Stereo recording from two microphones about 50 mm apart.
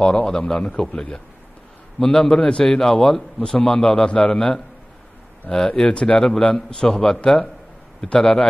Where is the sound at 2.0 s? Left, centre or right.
Centre.